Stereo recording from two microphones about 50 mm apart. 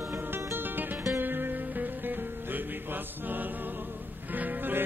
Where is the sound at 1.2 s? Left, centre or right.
Right.